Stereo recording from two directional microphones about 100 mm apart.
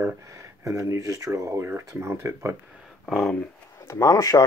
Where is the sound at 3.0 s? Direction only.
Centre (ahead or behind).